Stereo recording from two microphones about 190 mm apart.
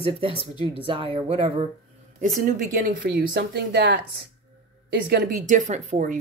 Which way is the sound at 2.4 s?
45° right (ahead or behind).